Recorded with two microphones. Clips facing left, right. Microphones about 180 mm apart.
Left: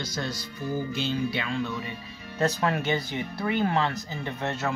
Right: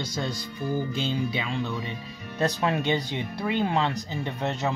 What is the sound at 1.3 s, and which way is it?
Speech, 15° right (ahead or behind).